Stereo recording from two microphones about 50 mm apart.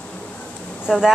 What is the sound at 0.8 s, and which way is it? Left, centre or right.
Speech, centre.